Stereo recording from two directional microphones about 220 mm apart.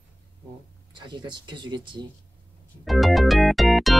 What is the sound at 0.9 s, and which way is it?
Speech, 20° right (ahead or behind).